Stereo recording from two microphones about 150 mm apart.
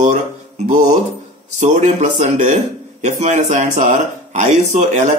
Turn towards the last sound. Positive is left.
turn(degrees=-55)  # may be behind; listen again after turning